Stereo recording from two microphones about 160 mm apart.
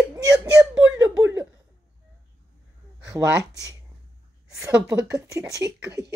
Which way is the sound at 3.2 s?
20° right (ahead or behind).